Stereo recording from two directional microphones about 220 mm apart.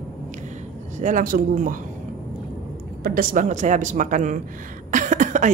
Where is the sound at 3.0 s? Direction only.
40° right (ahead or behind).